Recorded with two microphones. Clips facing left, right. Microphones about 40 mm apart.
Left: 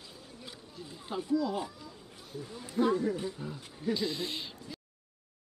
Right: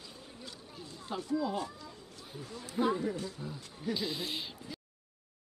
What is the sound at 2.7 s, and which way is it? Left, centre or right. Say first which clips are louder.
Speech: left 3 dB; centre.